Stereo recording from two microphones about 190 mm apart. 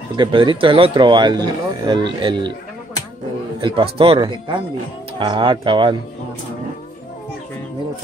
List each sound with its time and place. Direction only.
0.1 s speech: 25° right (ahead or behind)
3.6 s speech: 30° right (ahead or behind)